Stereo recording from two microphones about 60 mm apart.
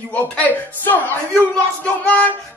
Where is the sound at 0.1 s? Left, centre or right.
Left.